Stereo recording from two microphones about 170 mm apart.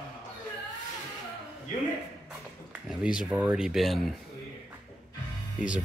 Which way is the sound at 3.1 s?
5° right (ahead or behind).